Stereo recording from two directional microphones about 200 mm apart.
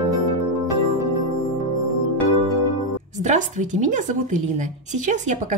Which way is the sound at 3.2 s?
40° right (ahead or behind).